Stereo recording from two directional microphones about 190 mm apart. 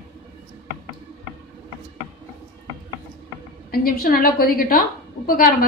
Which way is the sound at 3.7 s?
50° left (ahead or behind).